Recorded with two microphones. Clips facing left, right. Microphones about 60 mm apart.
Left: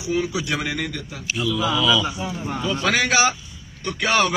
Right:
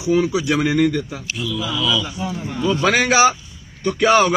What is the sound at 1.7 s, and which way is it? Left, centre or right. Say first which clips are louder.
Speech: left 2 dB; left.